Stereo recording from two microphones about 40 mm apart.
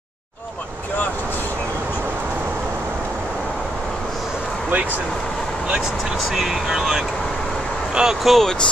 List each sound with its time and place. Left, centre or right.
6.3 s speech: centre
8.2 s speech: centre